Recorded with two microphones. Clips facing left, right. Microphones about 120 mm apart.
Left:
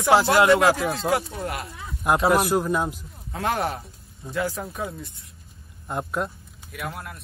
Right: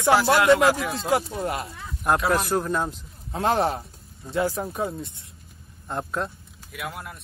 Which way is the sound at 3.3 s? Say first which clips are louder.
Right 3 dB; 25° right (ahead or behind).